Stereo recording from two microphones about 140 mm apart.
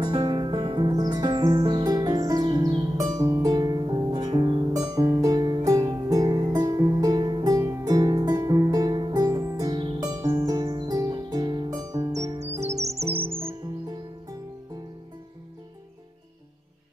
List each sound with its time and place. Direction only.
0.0 s music: 30° right (ahead or behind)
13.0 s music: 40° right (ahead or behind)
13.4 s music: 15° right (ahead or behind)